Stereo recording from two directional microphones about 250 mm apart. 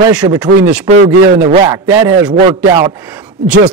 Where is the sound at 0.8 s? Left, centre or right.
Right.